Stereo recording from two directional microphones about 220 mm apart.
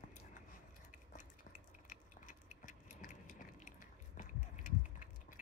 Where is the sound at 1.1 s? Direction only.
35° left (ahead or behind).